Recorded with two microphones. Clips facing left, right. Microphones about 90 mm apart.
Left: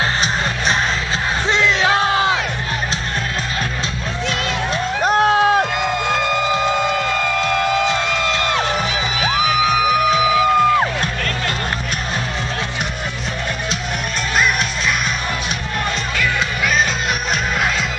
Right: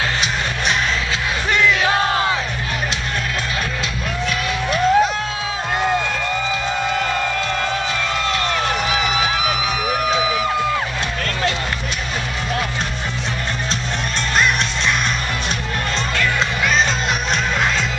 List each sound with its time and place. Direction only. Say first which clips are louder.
1.5 s music: even; 25° left (ahead or behind)
4.3 s music: left 1 dB; 30° left (ahead or behind)
5.0 s a sound: left 8 dB; 55° left (ahead or behind)
6.1 s music: left 4 dB; 65° left (ahead or behind)